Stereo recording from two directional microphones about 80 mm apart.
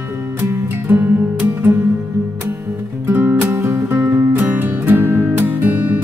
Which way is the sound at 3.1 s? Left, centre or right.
Right.